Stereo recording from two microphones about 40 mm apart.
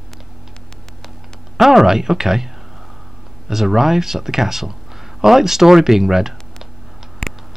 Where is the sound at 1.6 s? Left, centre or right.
Centre.